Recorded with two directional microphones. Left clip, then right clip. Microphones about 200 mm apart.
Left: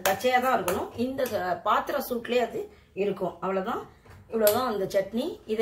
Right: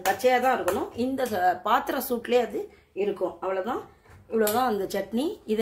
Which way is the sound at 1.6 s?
55° right (ahead or behind).